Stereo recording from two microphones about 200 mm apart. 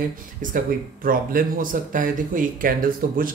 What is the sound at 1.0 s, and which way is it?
Speech, 45° right (ahead or behind).